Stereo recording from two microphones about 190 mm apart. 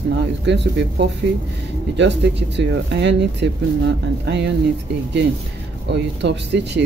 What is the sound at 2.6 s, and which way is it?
Speech, 65° right (ahead or behind).